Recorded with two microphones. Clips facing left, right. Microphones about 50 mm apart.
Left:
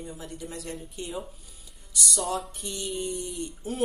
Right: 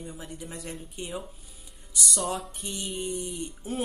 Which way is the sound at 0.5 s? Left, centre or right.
Centre.